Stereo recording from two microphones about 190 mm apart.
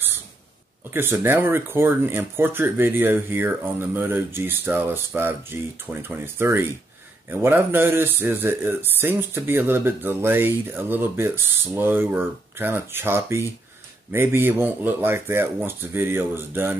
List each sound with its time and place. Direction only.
0.9 s speech: 10° right (ahead or behind)